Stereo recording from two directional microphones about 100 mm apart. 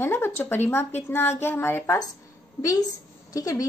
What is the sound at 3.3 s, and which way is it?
Speech, 35° left (ahead or behind).